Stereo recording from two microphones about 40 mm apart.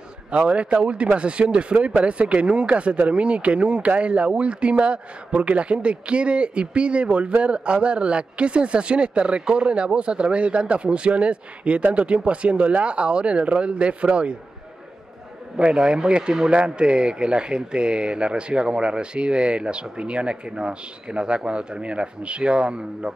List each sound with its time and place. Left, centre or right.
0.3 s a man's voice: right
15.5 s a man's voice: right